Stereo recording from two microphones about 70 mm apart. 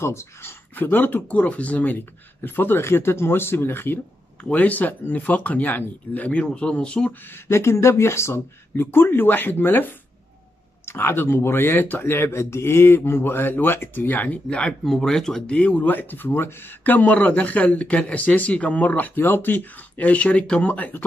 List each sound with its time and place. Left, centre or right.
0.0 s speech: left
4.4 s speech: left
7.1 s speech: left
14.7 s speech: centre
15.5 s speech: centre